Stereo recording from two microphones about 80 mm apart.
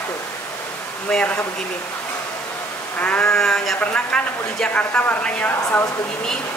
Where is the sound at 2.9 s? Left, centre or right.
Centre.